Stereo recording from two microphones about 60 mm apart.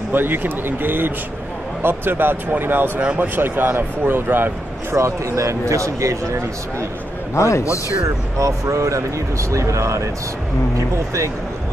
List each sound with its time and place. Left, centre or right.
0.1 s speech: right
4.9 s speech: right
7.3 s a man's voice: left
8.4 s speech: right